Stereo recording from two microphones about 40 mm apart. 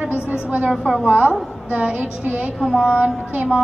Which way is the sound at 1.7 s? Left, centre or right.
Right.